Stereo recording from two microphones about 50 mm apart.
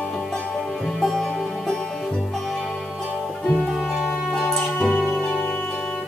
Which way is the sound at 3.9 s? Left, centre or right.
Centre.